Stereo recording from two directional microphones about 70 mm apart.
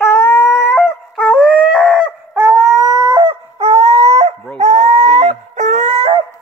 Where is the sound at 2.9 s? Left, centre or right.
Right.